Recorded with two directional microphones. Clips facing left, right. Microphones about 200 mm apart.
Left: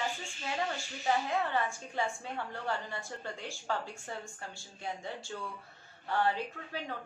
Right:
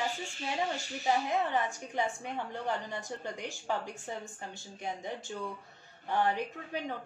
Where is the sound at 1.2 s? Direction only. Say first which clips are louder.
Right 1 dB; 20° right (ahead or behind).